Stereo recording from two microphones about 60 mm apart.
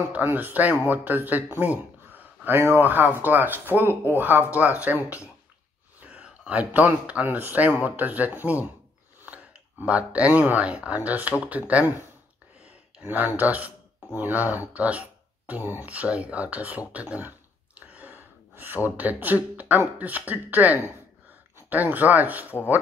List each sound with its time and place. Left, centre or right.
0.1 s speech: right
5.9 s a sound: right
7.2 s speech: right
13.0 s speech: right
17.7 s a sound: right
18.9 s speech: right